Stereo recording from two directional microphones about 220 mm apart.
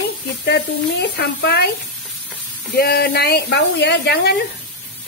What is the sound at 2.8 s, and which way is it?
Speech, 45° left (ahead or behind).